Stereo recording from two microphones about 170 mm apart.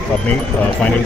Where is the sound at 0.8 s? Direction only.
10° left (ahead or behind).